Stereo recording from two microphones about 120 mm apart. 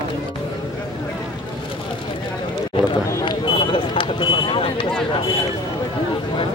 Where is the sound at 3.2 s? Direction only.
40° left (ahead or behind).